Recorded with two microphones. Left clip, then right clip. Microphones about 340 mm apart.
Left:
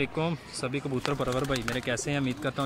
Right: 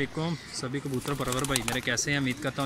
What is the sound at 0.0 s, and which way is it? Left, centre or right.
Speech, centre.